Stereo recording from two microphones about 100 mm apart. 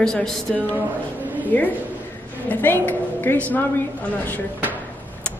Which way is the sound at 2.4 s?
20° left (ahead or behind).